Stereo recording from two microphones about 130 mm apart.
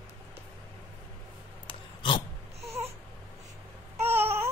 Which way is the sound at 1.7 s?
40° left (ahead or behind).